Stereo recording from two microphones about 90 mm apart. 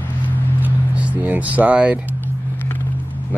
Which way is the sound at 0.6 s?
15° right (ahead or behind).